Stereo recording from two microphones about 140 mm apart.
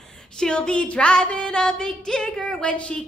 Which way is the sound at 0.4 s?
5° left (ahead or behind).